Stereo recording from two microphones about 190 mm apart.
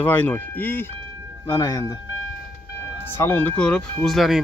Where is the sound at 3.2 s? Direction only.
10° left (ahead or behind).